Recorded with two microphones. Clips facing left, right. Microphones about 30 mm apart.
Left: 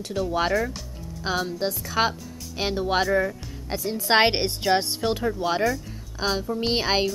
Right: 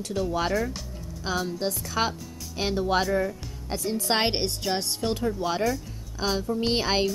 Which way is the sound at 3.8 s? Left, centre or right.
Centre.